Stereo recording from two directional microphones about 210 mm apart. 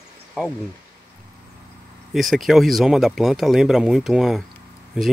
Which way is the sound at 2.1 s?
Centre (ahead or behind).